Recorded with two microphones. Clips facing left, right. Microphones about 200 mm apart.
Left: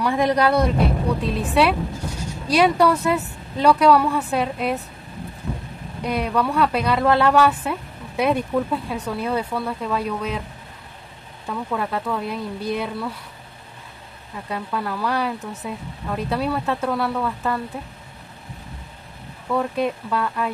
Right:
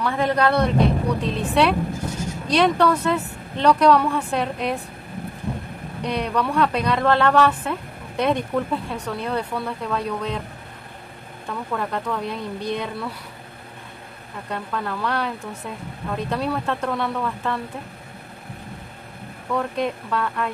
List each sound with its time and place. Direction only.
0.0 s speech: 15° left (ahead or behind)
6.0 s speech: 5° left (ahead or behind)
11.5 s speech: 5° left (ahead or behind)
14.5 s speech: 5° left (ahead or behind)
19.5 s speech: 5° left (ahead or behind)